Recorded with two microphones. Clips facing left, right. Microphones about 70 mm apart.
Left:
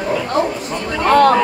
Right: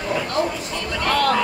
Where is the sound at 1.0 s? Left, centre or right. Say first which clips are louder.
Left 9 dB; left.